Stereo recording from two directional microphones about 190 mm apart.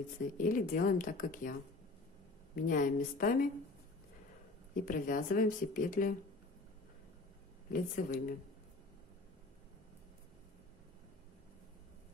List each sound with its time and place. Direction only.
0.4 s speech: 45° left (ahead or behind)
2.5 s speech: 45° left (ahead or behind)
4.7 s speech: 45° left (ahead or behind)
7.7 s speech: 45° left (ahead or behind)